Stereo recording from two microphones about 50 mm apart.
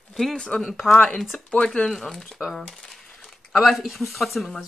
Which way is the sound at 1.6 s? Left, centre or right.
Centre.